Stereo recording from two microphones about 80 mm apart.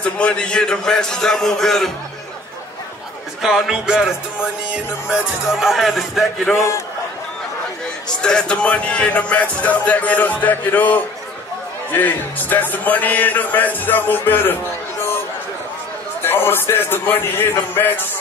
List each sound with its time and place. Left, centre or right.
0.0 s speech: centre
3.4 s speech: centre
6.5 s a man's voice: left
8.2 s a man's voice: centre
16.2 s a man's voice: left